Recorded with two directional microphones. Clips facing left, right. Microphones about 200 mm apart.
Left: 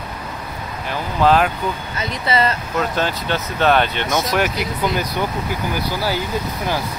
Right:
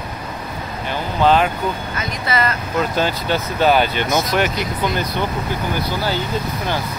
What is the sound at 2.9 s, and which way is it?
Speech, centre (ahead or behind).